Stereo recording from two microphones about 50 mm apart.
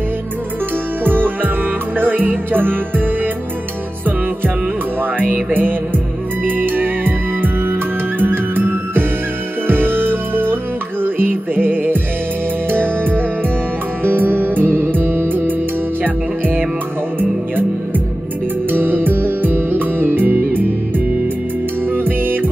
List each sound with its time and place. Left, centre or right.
1.0 s music: right
5.3 s music: right
14.0 s music: right
21.9 s music: right